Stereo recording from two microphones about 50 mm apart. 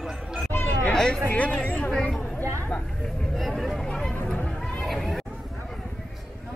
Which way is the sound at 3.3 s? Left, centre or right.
Centre.